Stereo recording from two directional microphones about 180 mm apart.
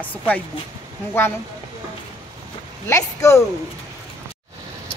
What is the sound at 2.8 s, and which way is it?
Speech, 15° left (ahead or behind).